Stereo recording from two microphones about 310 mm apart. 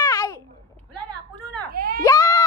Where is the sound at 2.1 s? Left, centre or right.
Centre.